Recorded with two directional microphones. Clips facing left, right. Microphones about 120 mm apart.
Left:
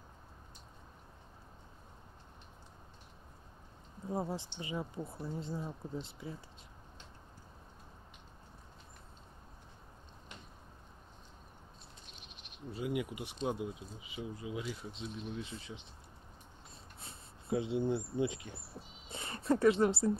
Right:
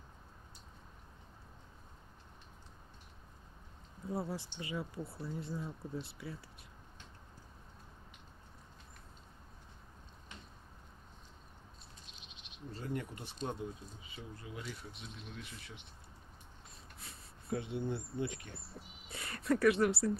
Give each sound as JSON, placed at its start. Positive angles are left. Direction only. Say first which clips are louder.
{"t": 4.1, "sound": "speech", "louder": "left 2 dB", "side_deg": 20}
{"t": 12.7, "sound": "speech", "louder": "left 5 dB", "side_deg": 10}
{"t": 17.0, "sound": "speech", "louder": "left 1 dB", "side_deg": 20}